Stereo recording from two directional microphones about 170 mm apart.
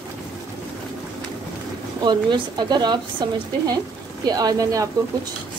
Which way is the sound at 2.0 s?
25° right (ahead or behind).